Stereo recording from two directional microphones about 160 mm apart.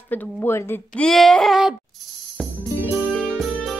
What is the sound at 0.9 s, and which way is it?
Speech, 5° left (ahead or behind).